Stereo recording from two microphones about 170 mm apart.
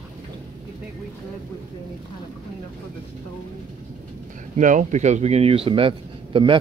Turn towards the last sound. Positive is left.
turn(degrees=-30)  # may be behind; listen again after turning